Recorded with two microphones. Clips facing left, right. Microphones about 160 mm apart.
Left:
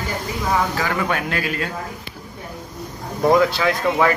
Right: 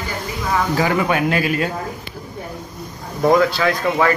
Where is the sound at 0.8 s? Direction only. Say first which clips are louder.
Right 5 dB; 10° right (ahead or behind).